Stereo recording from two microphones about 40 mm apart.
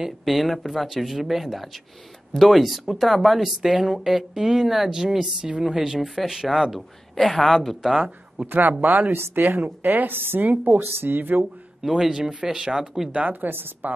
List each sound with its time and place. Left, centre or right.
0.2 s a woman's voice: centre
7.2 s speech: centre
8.5 s a woman's voice: right
9.1 s speech: right
9.6 s a woman's voice: right
10.4 s speech: right
10.8 s a woman's voice: right
11.8 s speech: centre
12.1 s a woman's voice: right
13.1 s speech: right
13.4 s a woman's voice: right